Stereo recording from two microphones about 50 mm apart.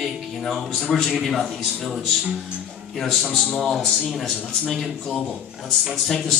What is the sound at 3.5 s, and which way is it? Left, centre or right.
A man's voice, centre.